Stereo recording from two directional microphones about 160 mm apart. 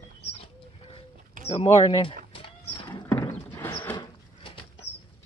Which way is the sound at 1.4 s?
40° left (ahead or behind).